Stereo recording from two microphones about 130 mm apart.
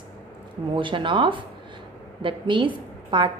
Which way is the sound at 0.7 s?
40° right (ahead or behind).